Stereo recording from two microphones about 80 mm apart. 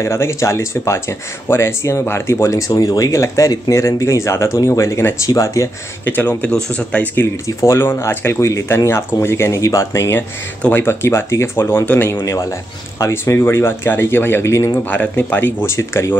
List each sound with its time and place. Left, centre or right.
0.0 s speech: left
6.0 s speech: left
7.4 s speech: left
12.3 s speech: left
14.9 s speech: left
15.6 s speech: left